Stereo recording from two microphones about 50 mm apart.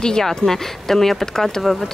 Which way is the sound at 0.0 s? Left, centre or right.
Centre.